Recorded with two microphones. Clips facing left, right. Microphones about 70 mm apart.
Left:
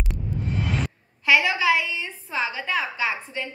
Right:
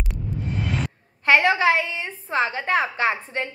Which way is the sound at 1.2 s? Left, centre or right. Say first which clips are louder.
Right 3 dB; right.